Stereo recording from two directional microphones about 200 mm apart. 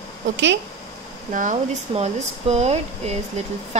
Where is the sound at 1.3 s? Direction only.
40° right (ahead or behind).